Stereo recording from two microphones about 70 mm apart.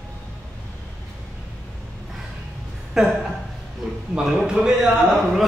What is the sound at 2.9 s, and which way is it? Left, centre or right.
Speech, centre.